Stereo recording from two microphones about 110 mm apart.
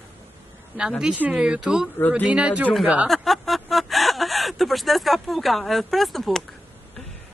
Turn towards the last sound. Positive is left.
turn(degrees=0)  # may be behind; listen again after turning